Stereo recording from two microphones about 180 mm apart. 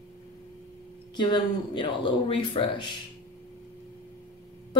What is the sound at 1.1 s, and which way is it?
Speech, 25° left (ahead or behind).